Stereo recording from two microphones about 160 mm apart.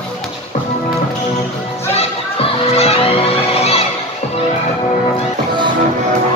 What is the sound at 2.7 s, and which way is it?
Music, 40° left (ahead or behind).